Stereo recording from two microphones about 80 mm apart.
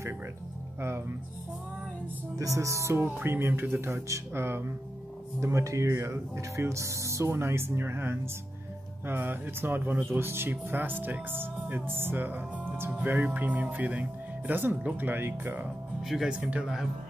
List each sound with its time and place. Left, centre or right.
0.7 s speech: right
2.3 s speech: right
16.0 s speech: centre
16.3 s speech: centre